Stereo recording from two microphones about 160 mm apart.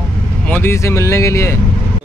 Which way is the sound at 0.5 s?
15° left (ahead or behind).